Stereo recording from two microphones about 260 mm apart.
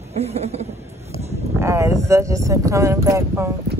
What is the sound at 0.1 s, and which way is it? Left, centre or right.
Speech, right.